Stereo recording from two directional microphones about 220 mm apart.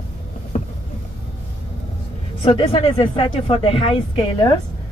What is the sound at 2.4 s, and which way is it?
Speech, 25° left (ahead or behind).